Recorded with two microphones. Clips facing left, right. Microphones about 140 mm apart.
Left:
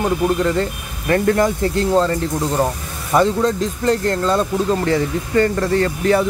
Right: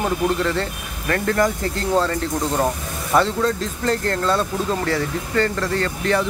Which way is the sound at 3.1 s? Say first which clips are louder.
Left 3 dB; centre (ahead or behind).